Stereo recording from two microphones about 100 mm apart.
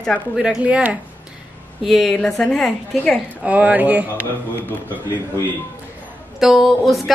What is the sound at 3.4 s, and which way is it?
Speech, 15° right (ahead or behind).